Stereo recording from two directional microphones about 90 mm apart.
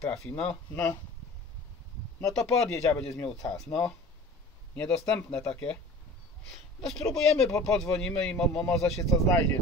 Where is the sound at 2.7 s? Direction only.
35° left (ahead or behind).